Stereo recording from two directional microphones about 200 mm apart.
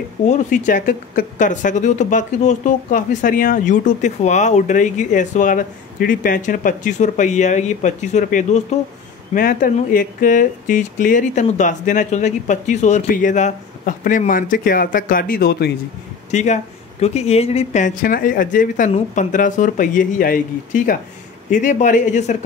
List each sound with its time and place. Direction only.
0.2 s a woman's voice: 35° left (ahead or behind)
16.3 s a woman's voice: 35° left (ahead or behind)